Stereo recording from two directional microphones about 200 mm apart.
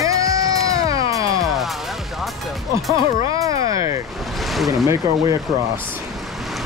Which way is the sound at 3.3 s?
15° right (ahead or behind).